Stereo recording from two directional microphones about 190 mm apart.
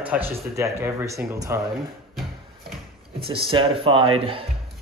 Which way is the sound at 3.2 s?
30° right (ahead or behind).